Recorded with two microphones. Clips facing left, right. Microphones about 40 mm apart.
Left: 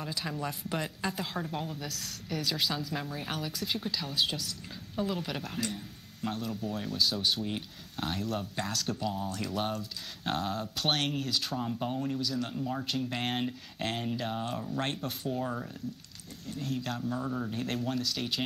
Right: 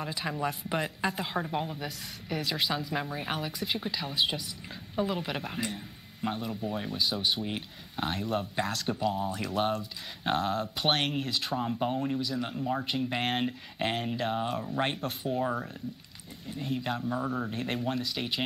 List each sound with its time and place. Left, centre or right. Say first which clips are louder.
0.0 s speech: right 3 dB; centre